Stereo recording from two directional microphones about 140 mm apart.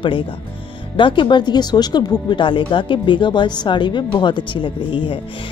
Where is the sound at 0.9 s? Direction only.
35° left (ahead or behind).